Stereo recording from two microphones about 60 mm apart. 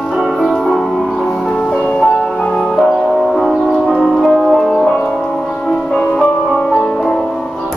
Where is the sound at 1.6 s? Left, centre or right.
Centre.